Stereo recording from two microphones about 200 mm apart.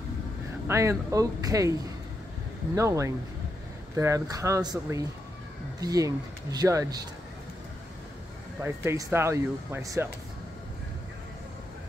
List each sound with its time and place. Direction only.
0.7 s speech: 15° right (ahead or behind)
8.6 s speech: 10° right (ahead or behind)